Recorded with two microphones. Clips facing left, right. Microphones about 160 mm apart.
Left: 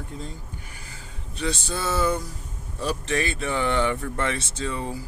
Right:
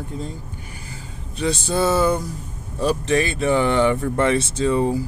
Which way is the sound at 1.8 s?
40° right (ahead or behind).